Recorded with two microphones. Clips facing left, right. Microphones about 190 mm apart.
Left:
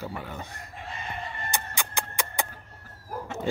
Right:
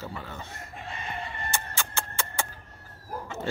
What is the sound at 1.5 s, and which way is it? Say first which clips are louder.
Music: left 2 dB; 15° left (ahead or behind).